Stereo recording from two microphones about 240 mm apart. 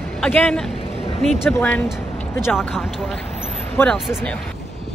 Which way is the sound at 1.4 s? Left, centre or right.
Centre.